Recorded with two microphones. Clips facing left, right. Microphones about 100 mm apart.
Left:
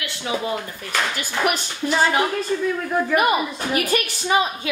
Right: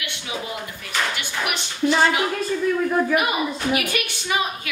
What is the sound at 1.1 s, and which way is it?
Speech, 40° left (ahead or behind).